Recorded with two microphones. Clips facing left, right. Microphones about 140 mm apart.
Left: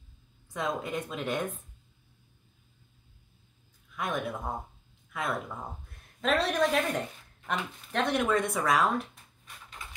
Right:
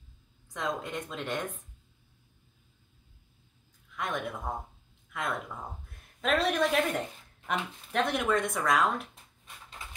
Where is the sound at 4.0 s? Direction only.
5° left (ahead or behind).